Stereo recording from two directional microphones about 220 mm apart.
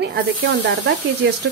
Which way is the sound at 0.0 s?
50° right (ahead or behind).